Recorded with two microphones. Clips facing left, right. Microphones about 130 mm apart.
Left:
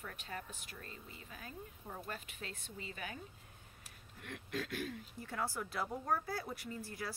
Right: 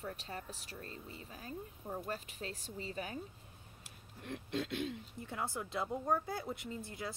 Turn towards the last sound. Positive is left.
turn(degrees=-20)  # may be behind; listen again after turning